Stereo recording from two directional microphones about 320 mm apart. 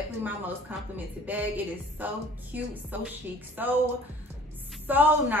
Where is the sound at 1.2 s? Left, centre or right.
Centre.